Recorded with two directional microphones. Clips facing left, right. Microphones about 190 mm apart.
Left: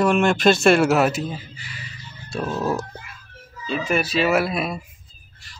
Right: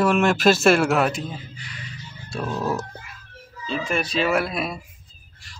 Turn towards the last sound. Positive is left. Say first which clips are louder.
# right 1 dB
turn(degrees=0)  # may be behind; listen again after turning